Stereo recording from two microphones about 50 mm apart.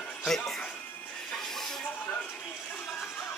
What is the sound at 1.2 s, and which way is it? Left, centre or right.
Hiss, centre.